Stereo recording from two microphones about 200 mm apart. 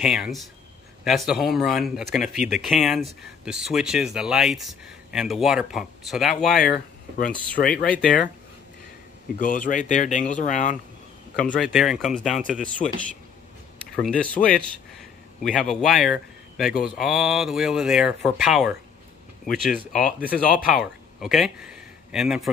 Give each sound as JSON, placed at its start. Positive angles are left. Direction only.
{"t": 0.0, "sound": "a man's voice", "side_deg": -5}
{"t": 6.6, "sound": "speech", "side_deg": 45}
{"t": 9.4, "sound": "speech", "side_deg": 40}
{"t": 11.3, "sound": "a man's voice", "side_deg": 5}
{"t": 13.9, "sound": "a man's voice", "side_deg": 5}